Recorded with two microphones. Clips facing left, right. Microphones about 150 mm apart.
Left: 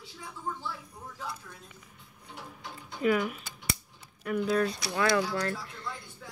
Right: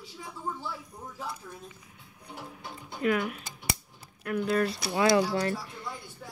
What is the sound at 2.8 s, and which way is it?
Speech, centre (ahead or behind).